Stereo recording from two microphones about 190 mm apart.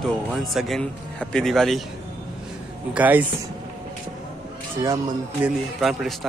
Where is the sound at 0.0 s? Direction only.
Centre (ahead or behind).